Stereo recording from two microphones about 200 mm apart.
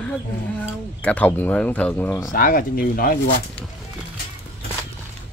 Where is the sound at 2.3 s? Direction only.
45° left (ahead or behind).